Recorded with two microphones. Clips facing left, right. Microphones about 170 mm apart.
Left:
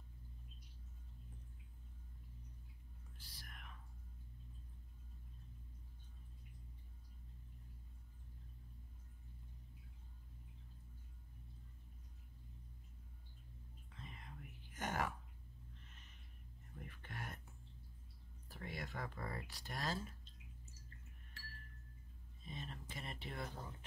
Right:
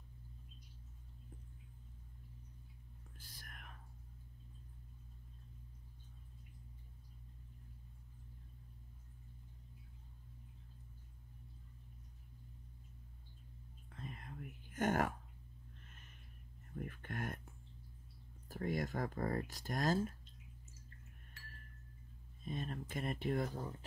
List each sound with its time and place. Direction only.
3.2 s whispering: 50° right (ahead or behind)
13.8 s whispering: 50° right (ahead or behind)
15.9 s a sound: 50° right (ahead or behind)
16.8 s speech: 50° right (ahead or behind)
18.5 s speech: 45° right (ahead or behind)
22.4 s speech: 50° right (ahead or behind)